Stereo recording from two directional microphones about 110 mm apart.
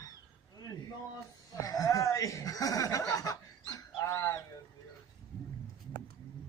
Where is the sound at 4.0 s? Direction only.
25° left (ahead or behind).